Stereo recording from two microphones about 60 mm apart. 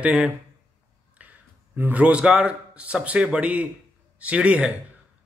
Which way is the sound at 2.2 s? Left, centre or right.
Centre.